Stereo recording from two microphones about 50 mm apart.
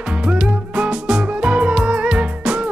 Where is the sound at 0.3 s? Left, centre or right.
Centre.